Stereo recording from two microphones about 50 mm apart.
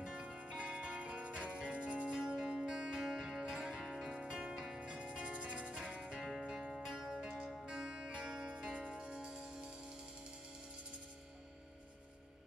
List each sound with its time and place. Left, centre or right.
0.0 s music: centre